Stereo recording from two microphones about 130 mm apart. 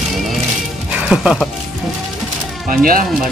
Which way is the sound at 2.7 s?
90° right.